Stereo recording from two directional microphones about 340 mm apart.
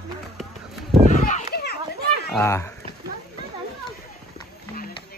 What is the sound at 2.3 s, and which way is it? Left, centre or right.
Speech, centre.